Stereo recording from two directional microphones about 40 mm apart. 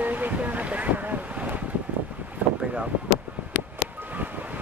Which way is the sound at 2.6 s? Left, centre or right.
Right.